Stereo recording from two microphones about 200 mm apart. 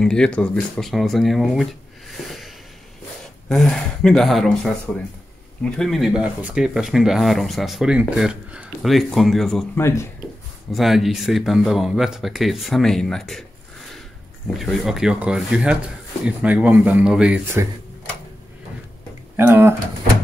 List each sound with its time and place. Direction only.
0.0 s speech: 5° left (ahead or behind)
14.6 s speech: centre (ahead or behind)
19.3 s speech: 10° right (ahead or behind)